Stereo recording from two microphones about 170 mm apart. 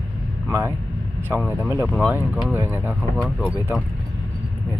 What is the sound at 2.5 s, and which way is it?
Speech, 10° right (ahead or behind).